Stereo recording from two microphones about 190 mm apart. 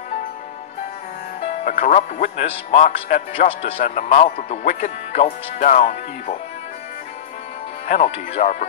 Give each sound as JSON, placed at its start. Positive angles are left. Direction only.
{"t": 1.4, "sound": "speech", "side_deg": 40}
{"t": 3.4, "sound": "speech", "side_deg": 30}
{"t": 7.9, "sound": "speech", "side_deg": 35}